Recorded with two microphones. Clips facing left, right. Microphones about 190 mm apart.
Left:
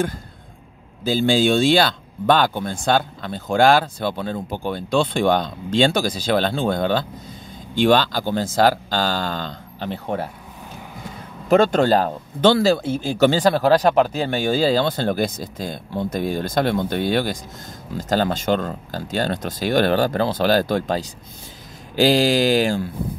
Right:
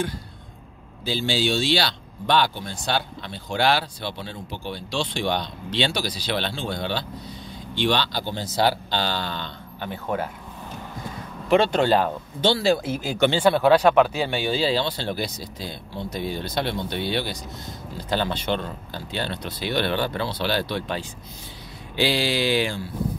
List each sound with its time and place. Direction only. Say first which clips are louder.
1.0 s speech: left 7 dB; 50° left (ahead or behind)
11.4 s speech: left 3 dB; 45° left (ahead or behind)
12.8 s speech: left 4 dB; 30° left (ahead or behind)
13.3 s speech: left 1 dB; 40° left (ahead or behind)